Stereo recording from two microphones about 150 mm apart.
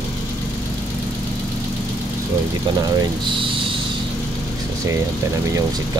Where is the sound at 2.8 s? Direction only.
25° right (ahead or behind).